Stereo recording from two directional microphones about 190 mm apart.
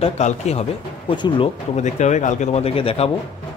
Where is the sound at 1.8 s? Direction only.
40° left (ahead or behind).